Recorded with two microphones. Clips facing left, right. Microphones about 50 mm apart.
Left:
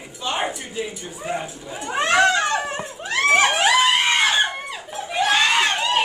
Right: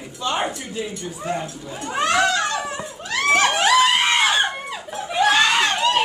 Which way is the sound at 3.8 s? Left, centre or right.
Centre.